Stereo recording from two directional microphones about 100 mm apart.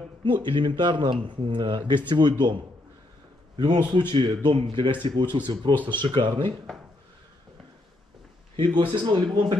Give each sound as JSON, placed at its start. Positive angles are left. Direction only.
{"t": 0.2, "sound": "speech", "side_deg": -55}
{"t": 5.3, "sound": "speech", "side_deg": -50}
{"t": 8.5, "sound": "speech", "side_deg": -55}